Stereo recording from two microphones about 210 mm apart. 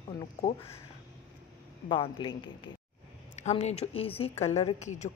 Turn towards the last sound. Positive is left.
turn(degrees=35)  # may be behind; listen again after turning